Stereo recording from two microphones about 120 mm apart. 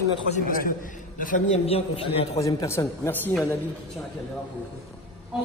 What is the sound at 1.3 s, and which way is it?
Speech, 65° left (ahead or behind).